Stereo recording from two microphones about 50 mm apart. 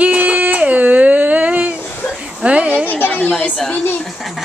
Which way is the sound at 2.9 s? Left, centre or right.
Left.